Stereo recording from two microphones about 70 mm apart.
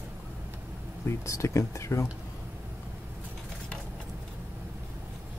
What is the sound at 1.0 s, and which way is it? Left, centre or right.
Speech, left.